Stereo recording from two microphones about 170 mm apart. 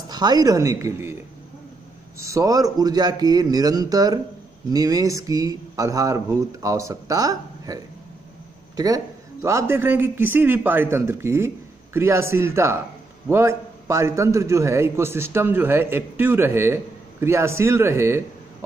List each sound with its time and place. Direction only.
0.1 s speech: 25° right (ahead or behind)
2.2 s a man's voice: 20° right (ahead or behind)